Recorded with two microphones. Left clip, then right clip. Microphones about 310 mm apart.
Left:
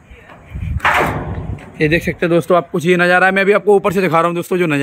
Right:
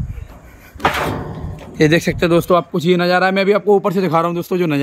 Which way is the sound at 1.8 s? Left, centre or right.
Centre.